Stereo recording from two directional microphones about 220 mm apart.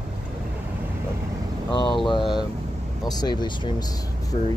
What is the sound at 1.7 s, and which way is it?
Speech, 20° left (ahead or behind).